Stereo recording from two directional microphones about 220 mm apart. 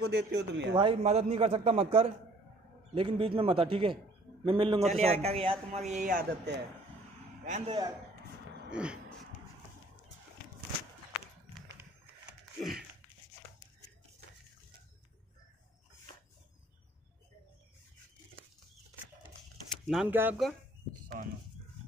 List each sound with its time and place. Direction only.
0.1 s speech: 50° right (ahead or behind)
0.7 s a man's voice: 25° right (ahead or behind)
6.5 s speech: 50° right (ahead or behind)
7.4 s a man's voice: 30° right (ahead or behind)
8.6 s speech: 5° right (ahead or behind)
19.9 s speech: 5° right (ahead or behind)